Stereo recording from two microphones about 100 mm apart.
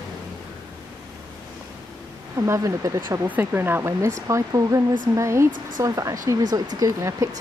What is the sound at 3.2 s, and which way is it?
Speech, 20° right (ahead or behind).